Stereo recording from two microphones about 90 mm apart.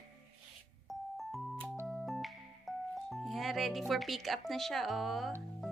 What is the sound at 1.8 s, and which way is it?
Keyboard, centre (ahead or behind).